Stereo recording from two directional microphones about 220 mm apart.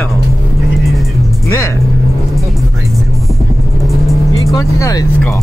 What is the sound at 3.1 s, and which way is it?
Vehicle, centre (ahead or behind).